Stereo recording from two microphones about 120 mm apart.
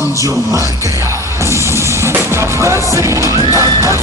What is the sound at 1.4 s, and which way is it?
Music, 20° right (ahead or behind).